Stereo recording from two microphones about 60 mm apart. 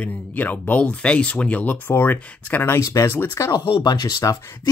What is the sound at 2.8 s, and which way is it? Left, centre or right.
Speech, left.